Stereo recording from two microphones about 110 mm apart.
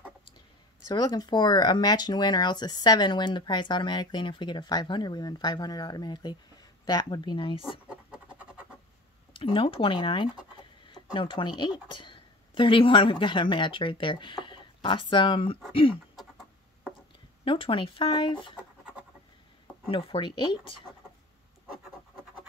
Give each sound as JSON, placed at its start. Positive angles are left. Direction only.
{"t": 0.8, "sound": "speech", "side_deg": 40}
{"t": 7.9, "sound": "a sound", "side_deg": -10}
{"t": 9.3, "sound": "speech", "side_deg": 55}
{"t": 16.2, "sound": "a sound", "side_deg": 0}
{"t": 17.5, "sound": "speech", "side_deg": 55}
{"t": 19.9, "sound": "speech", "side_deg": 50}